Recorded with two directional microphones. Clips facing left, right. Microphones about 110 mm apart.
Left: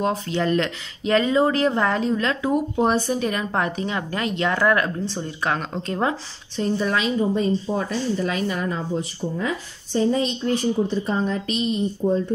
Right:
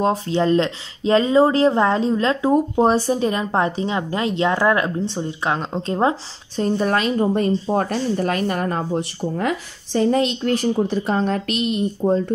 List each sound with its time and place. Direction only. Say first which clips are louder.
0.0 s speech: right 4 dB; 30° right (ahead or behind)
6.5 s a woman's voice: right 3 dB; 45° right (ahead or behind); by 12.2 s 70° right (ahead or behind)